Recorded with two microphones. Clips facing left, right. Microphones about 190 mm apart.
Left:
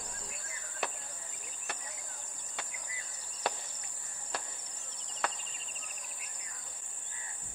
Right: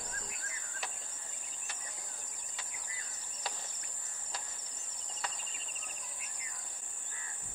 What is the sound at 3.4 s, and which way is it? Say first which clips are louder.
Cricket: left 8 dB; 60° left (ahead or behind).